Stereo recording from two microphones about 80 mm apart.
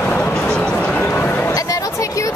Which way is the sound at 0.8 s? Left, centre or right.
Left.